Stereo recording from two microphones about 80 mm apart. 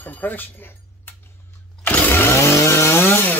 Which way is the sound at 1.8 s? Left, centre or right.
Left.